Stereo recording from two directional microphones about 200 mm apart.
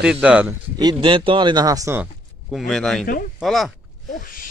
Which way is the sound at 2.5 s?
Centre (ahead or behind).